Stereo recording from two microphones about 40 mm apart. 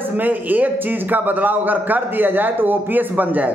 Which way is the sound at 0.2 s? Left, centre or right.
Right.